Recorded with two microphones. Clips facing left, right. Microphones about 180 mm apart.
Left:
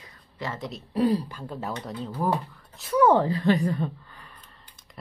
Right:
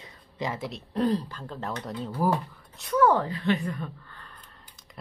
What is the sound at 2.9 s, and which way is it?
Speech, 20° left (ahead or behind).